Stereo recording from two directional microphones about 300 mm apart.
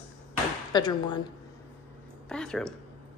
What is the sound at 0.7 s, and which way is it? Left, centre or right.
Speech, centre.